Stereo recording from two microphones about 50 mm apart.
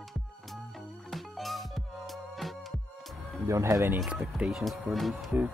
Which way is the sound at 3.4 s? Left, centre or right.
Right.